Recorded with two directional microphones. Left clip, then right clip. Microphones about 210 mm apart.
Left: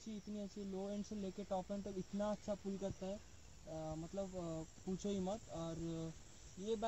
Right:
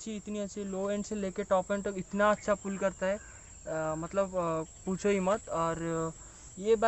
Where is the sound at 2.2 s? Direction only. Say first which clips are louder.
Right 16 dB; 40° right (ahead or behind).